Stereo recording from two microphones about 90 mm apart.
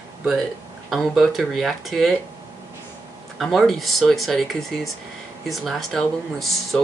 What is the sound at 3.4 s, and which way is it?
Speech, centre (ahead or behind).